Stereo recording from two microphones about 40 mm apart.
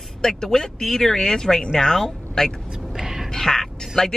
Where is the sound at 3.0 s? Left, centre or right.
Centre.